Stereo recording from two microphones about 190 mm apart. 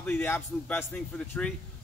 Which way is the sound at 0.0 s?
10° left (ahead or behind).